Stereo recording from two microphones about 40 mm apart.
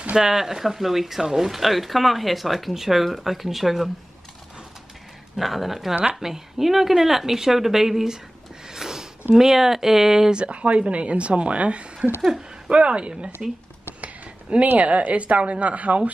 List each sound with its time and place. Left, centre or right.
0.1 s speech: centre
5.4 s speech: centre
8.6 s a sound: centre
9.3 s speech: centre
10.3 s a woman's voice: right
14.0 s a sound: right
14.7 s a woman's voice: right